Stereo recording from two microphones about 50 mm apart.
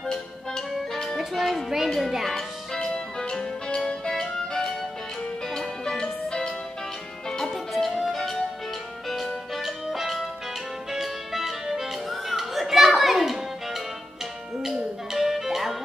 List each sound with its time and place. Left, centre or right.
0.0 s music: centre
7.5 s music: centre